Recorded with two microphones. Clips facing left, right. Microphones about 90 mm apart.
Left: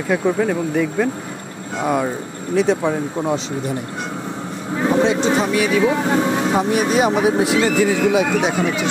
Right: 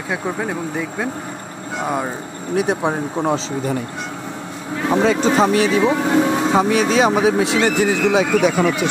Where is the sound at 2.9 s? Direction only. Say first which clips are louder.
Right 1 dB; 40° right (ahead or behind).